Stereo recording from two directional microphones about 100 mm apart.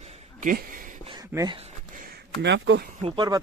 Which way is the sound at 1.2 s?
35° right (ahead or behind).